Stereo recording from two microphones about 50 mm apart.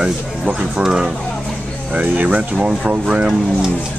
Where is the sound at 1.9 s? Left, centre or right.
Right.